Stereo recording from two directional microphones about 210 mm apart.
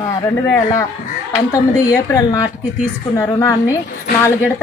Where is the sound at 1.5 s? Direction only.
15° left (ahead or behind).